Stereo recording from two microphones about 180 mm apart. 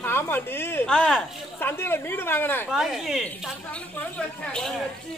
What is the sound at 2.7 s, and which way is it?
Speech, centre (ahead or behind).